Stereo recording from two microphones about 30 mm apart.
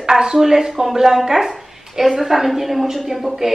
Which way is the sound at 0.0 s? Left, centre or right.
Right.